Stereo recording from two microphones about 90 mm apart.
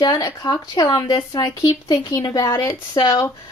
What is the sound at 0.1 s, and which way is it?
A woman's voice, 45° left (ahead or behind).